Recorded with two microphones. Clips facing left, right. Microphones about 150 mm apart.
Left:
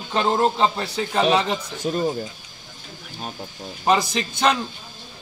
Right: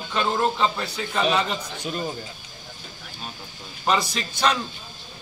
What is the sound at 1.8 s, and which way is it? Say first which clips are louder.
Speech: left 7 dB; 40° left (ahead or behind).